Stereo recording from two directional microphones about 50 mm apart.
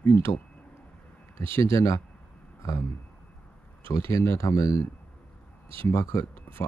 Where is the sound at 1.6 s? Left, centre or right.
Left.